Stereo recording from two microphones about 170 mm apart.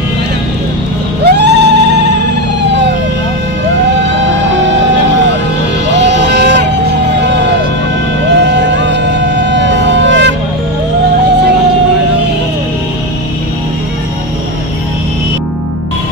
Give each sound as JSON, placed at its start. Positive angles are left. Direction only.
{"t": 1.2, "sound": "a sound", "side_deg": -85}
{"t": 6.0, "sound": "music", "side_deg": -90}
{"t": 8.3, "sound": "vehicle", "side_deg": -90}